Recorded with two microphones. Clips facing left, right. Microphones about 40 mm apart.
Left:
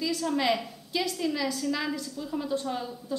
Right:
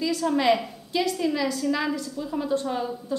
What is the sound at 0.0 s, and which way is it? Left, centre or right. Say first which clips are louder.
A woman's voice: right 5 dB; centre.